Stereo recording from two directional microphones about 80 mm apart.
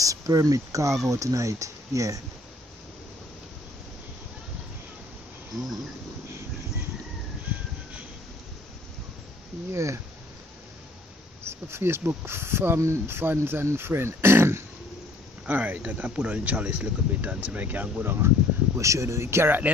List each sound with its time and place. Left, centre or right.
0.0 s speech: right
5.5 s speech: right
9.7 s speech: right
11.4 s speech: right
15.4 s speech: centre
18.8 s speech: right